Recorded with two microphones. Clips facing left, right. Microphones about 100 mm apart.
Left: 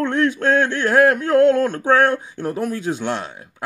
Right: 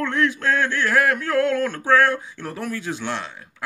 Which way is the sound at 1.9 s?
50° left (ahead or behind).